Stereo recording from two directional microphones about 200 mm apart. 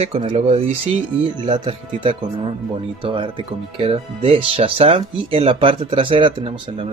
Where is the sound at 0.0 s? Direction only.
30° right (ahead or behind).